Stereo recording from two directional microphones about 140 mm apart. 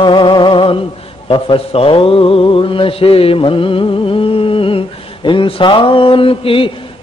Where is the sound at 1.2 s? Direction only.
40° left (ahead or behind).